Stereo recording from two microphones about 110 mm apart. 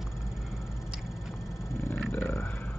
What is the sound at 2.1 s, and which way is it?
Roaring cats, 20° left (ahead or behind).